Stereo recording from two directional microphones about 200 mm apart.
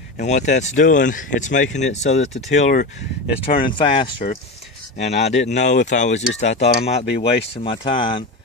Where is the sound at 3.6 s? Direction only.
25° left (ahead or behind).